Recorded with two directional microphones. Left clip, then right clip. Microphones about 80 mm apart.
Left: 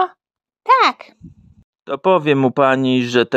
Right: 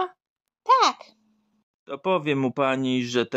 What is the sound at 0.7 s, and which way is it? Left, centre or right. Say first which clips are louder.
A child's voice: left 6 dB; left.